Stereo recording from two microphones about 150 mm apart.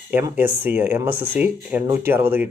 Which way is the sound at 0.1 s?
15° right (ahead or behind).